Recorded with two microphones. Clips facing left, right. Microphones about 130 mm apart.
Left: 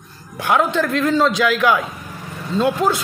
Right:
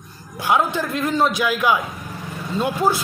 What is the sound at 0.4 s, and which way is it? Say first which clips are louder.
Speech: left 2 dB; 10° right (ahead or behind).